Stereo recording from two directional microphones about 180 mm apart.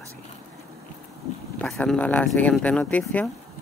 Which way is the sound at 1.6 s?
5° left (ahead or behind).